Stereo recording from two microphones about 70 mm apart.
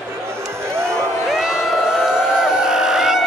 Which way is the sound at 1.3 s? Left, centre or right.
Centre.